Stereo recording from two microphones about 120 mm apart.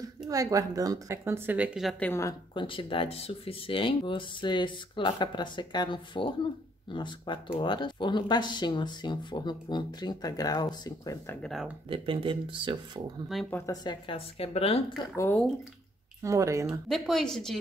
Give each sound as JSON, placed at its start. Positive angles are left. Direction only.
{"t": 0.3, "sound": "speech", "side_deg": -30}
{"t": 2.5, "sound": "speech", "side_deg": 45}
{"t": 11.9, "sound": "speech", "side_deg": -45}
{"t": 13.3, "sound": "speech", "side_deg": 0}
{"t": 13.7, "sound": "speech", "side_deg": 35}
{"t": 14.1, "sound": "speech", "side_deg": 55}
{"t": 16.2, "sound": "speech", "side_deg": -25}
{"t": 16.9, "sound": "speech", "side_deg": 5}